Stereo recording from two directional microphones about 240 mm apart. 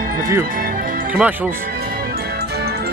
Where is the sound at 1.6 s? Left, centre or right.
Right.